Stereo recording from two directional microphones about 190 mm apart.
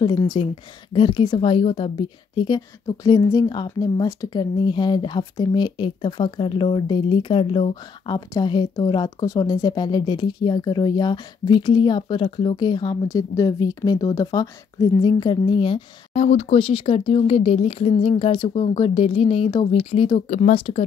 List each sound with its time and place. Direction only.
0.0 s a woman's voice: 20° left (ahead or behind)